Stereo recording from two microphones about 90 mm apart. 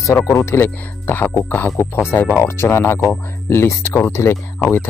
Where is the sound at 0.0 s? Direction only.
35° left (ahead or behind).